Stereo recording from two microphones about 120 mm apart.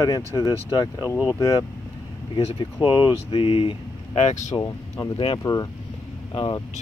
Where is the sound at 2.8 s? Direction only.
40° left (ahead or behind).